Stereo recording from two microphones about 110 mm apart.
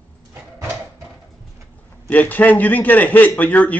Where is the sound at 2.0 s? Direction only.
15° left (ahead or behind).